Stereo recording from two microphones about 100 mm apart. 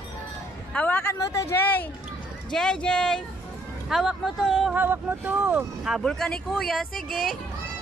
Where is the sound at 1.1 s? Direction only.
30° left (ahead or behind).